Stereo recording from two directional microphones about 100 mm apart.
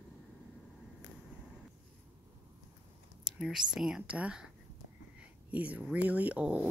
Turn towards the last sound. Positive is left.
turn(degrees=-15)  # may be behind; listen again after turning